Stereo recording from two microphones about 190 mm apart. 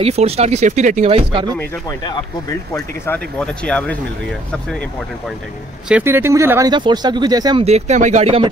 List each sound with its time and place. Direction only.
0.0 s speech: 35° right (ahead or behind)
1.6 s speech: 15° left (ahead or behind)
5.9 s speech: 10° right (ahead or behind)
7.6 s speech: 35° right (ahead or behind)